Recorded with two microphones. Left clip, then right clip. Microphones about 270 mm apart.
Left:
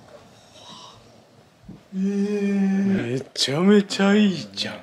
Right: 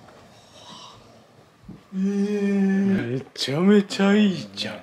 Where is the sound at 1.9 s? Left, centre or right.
Centre.